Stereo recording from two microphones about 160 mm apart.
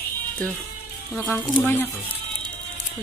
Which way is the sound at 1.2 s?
15° left (ahead or behind).